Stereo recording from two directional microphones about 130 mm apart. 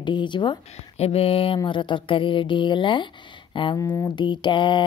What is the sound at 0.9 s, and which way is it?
Speech, 50° left (ahead or behind).